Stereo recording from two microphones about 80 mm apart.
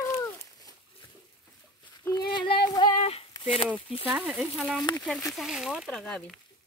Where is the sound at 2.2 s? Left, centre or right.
Left.